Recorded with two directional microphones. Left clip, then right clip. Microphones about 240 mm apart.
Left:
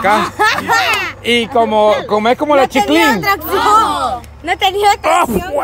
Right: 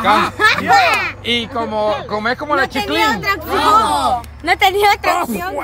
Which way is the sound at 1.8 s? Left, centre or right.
Left.